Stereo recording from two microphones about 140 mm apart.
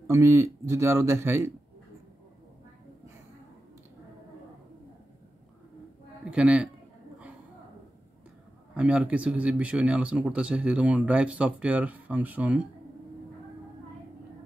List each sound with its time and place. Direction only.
0.0 s speech: 20° right (ahead or behind)
6.2 s a man's voice: 5° right (ahead or behind)
8.7 s speech: 5° right (ahead or behind)